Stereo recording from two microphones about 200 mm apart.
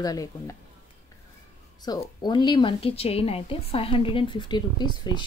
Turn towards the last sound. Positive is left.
turn(degrees=20)  # may be behind; listen again after turning